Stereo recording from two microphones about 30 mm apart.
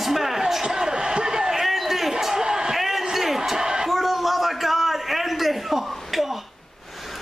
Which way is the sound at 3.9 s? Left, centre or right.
Centre.